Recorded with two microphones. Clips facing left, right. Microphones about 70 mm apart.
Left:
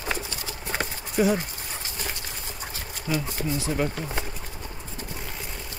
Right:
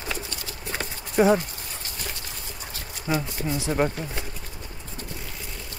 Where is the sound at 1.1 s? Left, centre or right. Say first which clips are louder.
Right 4 dB; right.